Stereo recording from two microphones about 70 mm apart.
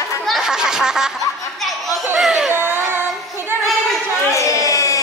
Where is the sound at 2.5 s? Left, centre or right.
Right.